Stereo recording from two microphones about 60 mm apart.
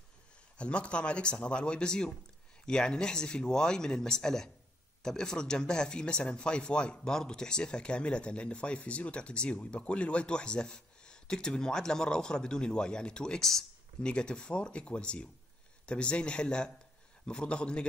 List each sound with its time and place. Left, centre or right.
0.6 s speech: centre